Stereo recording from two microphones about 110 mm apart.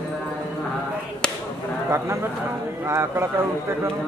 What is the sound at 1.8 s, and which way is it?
A man's voice, 25° right (ahead or behind).